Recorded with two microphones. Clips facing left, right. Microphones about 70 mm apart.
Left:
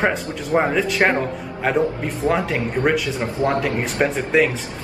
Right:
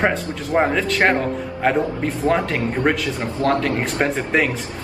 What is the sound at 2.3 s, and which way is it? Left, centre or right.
Speech, centre.